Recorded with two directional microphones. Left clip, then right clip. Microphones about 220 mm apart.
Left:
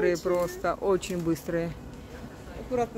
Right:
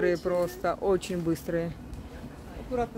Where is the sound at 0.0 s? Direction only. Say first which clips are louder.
Left 1 dB; 5° right (ahead or behind).